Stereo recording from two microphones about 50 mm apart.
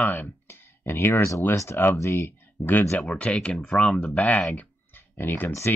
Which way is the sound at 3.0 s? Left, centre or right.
Left.